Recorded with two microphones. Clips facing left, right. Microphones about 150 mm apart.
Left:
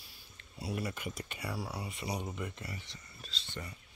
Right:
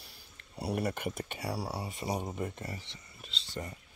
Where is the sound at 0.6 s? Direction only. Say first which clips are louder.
Right 5 dB; 60° right (ahead or behind).